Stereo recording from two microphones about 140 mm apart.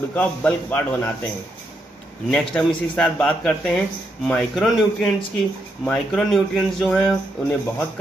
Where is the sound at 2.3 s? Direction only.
5° left (ahead or behind).